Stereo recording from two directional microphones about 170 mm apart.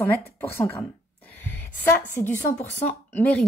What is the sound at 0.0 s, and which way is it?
A woman's voice, 10° left (ahead or behind).